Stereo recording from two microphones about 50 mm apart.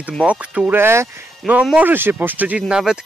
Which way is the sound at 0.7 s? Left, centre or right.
Right.